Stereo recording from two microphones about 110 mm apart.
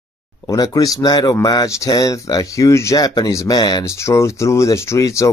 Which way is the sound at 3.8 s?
25° left (ahead or behind).